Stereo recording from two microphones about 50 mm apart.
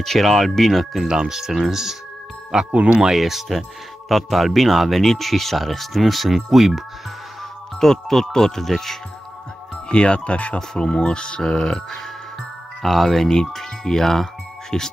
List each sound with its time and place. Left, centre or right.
0.0 s speech: centre
1.0 s speech: centre
2.7 s speech: right
3.0 s speech: centre
7.8 s speech: centre
9.8 s speech: left
12.8 s speech: centre